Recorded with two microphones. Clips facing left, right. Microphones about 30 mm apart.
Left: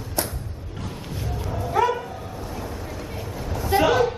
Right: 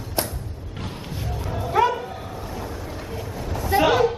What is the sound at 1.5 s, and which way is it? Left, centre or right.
Music, right.